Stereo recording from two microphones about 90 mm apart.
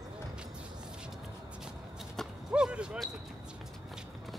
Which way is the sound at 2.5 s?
10° right (ahead or behind).